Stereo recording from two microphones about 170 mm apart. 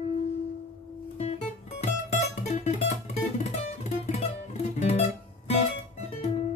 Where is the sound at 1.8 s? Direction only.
40° left (ahead or behind).